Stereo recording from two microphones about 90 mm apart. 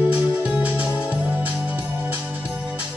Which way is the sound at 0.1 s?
15° right (ahead or behind).